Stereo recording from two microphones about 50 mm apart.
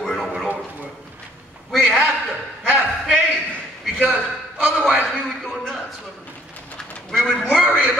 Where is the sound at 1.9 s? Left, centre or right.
Right.